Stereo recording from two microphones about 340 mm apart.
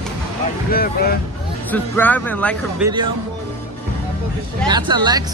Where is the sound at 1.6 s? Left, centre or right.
Centre.